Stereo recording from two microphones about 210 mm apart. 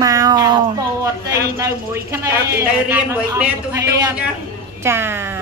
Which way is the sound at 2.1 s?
10° right (ahead or behind).